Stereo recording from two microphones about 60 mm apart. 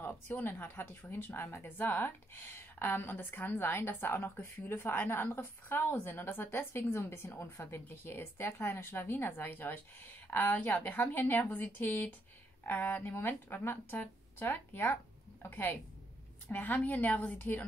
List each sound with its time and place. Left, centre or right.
0.0 s a woman's voice: left